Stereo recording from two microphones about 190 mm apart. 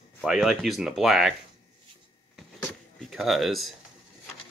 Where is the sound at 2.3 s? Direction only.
Centre (ahead or behind).